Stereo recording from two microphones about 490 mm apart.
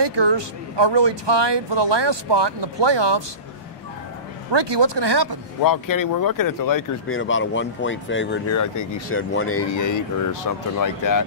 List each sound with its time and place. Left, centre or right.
0.0 s speech: right
4.5 s speech: right
5.6 s speech: left
7.1 s speech: left
8.5 s speech: left
9.3 s speech: left